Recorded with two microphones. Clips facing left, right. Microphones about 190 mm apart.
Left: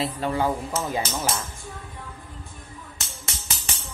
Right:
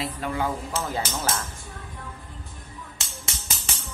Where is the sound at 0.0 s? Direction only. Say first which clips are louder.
Left 3 dB; 30° left (ahead or behind).